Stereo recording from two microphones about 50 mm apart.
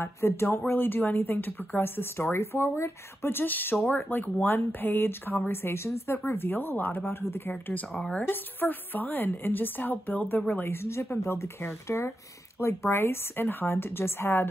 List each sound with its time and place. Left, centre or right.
0.0 s speech: left
0.7 s a woman's voice: left
6.1 s speech: left
7.1 s speech: left
7.9 s speech: left
8.3 s a woman's voice: left
10.5 s speech: left
11.9 s speech: left
12.5 s speech: left